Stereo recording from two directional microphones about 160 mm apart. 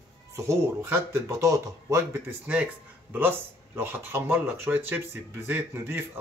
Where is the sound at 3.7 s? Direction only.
15° right (ahead or behind).